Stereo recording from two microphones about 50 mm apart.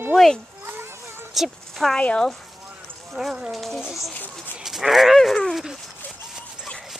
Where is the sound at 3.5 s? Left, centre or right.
Centre.